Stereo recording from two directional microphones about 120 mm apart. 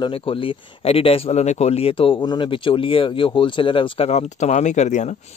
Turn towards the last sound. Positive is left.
turn(degrees=80)